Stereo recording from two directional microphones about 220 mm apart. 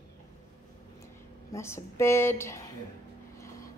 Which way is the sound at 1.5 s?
10° left (ahead or behind).